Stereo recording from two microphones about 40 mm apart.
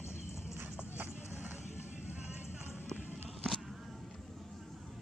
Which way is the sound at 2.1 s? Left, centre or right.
Right.